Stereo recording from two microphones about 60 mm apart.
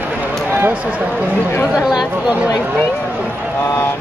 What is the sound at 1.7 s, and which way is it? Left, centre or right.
Speech, centre.